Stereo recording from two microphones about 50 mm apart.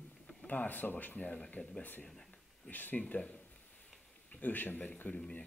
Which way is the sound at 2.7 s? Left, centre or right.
Left.